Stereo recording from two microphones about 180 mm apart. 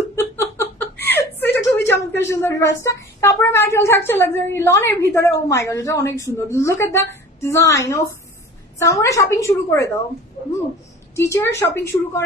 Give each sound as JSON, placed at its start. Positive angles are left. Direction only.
{"t": 0.1, "sound": "a sound", "side_deg": 15}
{"t": 1.0, "sound": "whimper", "side_deg": 70}
{"t": 1.7, "sound": "a woman's voice", "side_deg": 15}
{"t": 11.1, "sound": "a woman's voice", "side_deg": 15}